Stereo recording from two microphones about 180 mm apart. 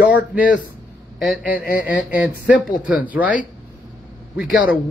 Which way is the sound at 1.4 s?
55° left (ahead or behind).